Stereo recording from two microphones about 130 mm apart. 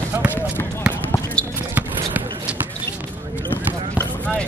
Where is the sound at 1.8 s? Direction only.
15° right (ahead or behind).